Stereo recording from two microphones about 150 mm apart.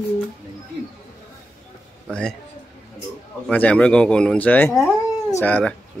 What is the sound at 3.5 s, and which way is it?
Speech, 10° left (ahead or behind).